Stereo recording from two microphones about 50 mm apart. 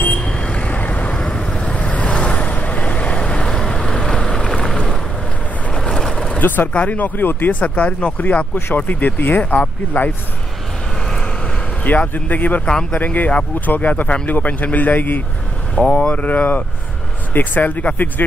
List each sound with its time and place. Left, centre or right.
0.2 s vehicle: left
1.1 s vehicle: centre
5.8 s vehicle: centre
6.1 s vehicle: left
6.4 s speech: left
6.7 s speech: left
11.8 s speech: left